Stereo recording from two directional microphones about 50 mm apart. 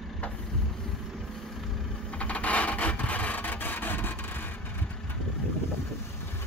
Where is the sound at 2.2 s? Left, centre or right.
Left.